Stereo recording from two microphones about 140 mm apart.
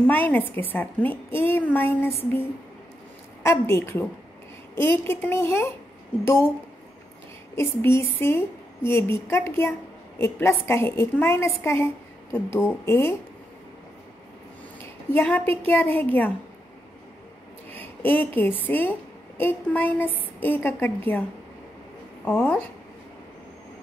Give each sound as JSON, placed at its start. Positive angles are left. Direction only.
{"t": 0.0, "sound": "a woman's voice", "side_deg": 15}
{"t": 3.4, "sound": "a woman's voice", "side_deg": 20}
{"t": 7.5, "sound": "a woman's voice", "side_deg": 20}
{"t": 15.1, "sound": "a woman's voice", "side_deg": 15}
{"t": 17.7, "sound": "a woman's voice", "side_deg": 15}
{"t": 22.2, "sound": "a woman's voice", "side_deg": 10}